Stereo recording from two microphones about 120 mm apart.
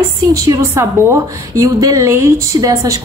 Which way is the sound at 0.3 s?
25° right (ahead or behind).